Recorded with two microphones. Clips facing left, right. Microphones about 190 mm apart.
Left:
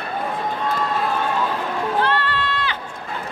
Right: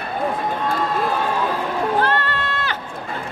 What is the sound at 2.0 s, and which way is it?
Music, 45° right (ahead or behind).